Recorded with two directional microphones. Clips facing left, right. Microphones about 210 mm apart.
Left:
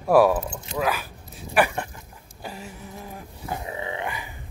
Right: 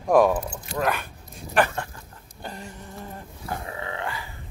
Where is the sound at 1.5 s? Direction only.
15° left (ahead or behind).